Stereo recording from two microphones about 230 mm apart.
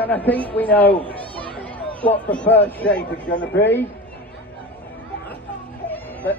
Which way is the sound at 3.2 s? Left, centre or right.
Left.